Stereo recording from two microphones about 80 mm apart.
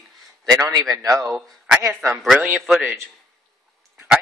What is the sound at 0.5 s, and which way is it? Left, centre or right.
Speech, right.